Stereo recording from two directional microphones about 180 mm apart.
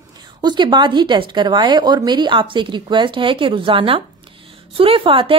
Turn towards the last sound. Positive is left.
turn(degrees=-30)  # may be behind; listen again after turning